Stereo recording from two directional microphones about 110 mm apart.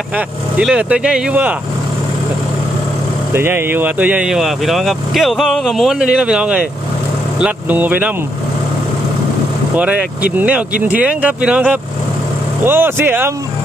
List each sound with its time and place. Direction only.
0.6 s speech: 10° right (ahead or behind)
3.3 s speech: 20° right (ahead or behind)
9.8 s speech: 10° right (ahead or behind)